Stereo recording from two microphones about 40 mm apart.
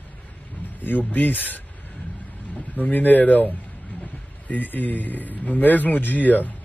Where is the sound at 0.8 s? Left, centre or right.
Left.